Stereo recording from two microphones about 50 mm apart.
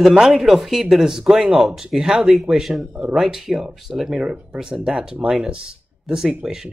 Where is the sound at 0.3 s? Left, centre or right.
Centre.